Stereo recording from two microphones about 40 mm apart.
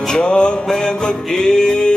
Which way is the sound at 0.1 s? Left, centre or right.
Left.